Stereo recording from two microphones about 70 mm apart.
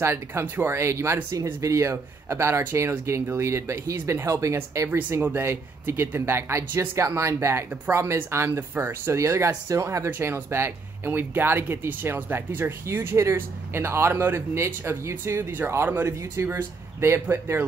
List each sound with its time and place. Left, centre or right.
0.0 s speech: right
5.2 s speech: right